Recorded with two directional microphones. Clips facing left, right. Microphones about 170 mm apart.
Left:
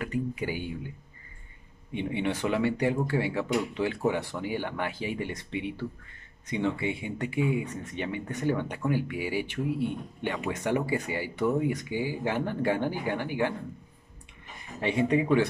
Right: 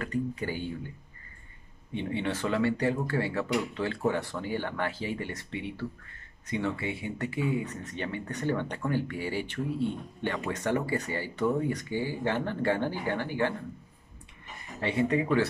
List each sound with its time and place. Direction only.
0.0 s speech: 15° left (ahead or behind)
2.0 s speech: 15° left (ahead or behind)
14.8 s speech: 15° left (ahead or behind)